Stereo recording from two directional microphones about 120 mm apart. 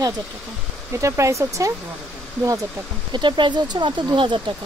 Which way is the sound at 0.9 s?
25° right (ahead or behind).